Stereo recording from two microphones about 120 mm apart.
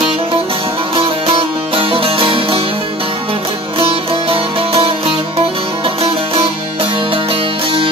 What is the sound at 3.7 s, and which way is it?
Music, 50° right (ahead or behind).